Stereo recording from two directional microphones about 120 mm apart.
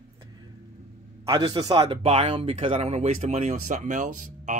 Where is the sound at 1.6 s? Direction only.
35° right (ahead or behind).